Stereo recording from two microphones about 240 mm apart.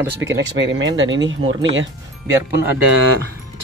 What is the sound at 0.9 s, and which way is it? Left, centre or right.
Speech, right.